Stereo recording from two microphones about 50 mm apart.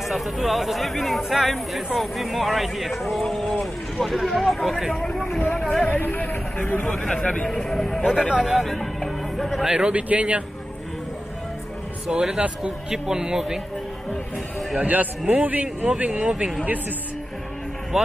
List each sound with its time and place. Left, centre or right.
0.1 s speech: centre
4.9 s speech: centre
5.9 s speech: left
7.0 s speech: left
7.4 s speech: centre
8.0 s speech: centre
8.6 s music: centre
9.7 s speech: centre
12.1 s speech: centre
12.9 s speech: centre
14.9 s a man's voice: right
17.9 s speech: centre